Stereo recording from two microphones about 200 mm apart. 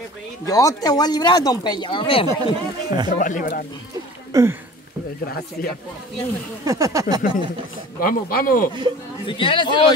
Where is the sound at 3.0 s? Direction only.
40° left (ahead or behind).